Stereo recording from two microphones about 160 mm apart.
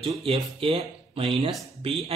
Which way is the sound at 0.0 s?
35° right (ahead or behind).